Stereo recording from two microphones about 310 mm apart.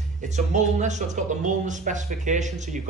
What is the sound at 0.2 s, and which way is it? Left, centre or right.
Speech, right.